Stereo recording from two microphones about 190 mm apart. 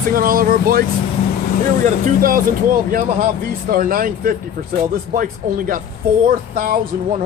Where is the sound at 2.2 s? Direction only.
45° right (ahead or behind).